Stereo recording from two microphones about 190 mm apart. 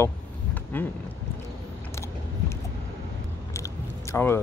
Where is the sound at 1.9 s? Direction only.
15° left (ahead or behind).